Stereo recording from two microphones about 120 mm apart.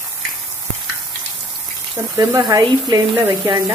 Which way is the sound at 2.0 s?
30° right (ahead or behind).